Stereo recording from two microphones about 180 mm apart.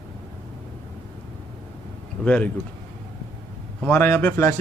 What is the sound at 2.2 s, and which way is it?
Speech, 5° left (ahead or behind).